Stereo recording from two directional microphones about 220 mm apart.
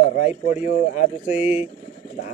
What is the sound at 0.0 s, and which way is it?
Speech, 30° left (ahead or behind).